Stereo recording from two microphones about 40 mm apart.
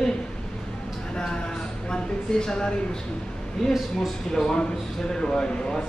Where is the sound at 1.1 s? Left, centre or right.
Left.